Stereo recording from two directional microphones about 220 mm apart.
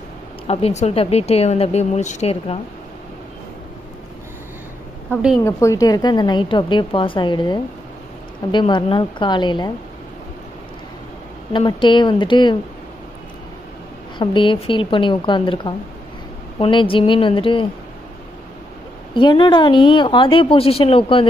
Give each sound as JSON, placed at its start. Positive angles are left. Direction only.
{"t": 0.5, "sound": "speech", "side_deg": 25}
{"t": 5.4, "sound": "speech", "side_deg": 15}
{"t": 11.5, "sound": "speech", "side_deg": 20}
{"t": 14.1, "sound": "speech", "side_deg": 20}
{"t": 19.1, "sound": "speech", "side_deg": 20}